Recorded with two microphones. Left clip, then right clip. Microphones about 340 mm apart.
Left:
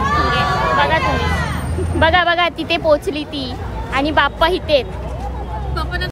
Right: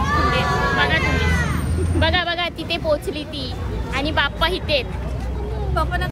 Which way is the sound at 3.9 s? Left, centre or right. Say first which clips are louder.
Left 6 dB; left.